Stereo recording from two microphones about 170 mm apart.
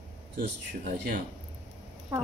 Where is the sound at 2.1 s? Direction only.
15° right (ahead or behind).